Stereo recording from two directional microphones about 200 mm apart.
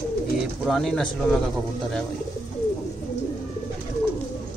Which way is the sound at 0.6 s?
Centre (ahead or behind).